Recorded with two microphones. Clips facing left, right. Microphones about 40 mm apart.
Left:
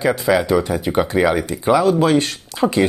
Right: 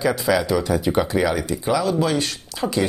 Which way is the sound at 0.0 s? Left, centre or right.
Left.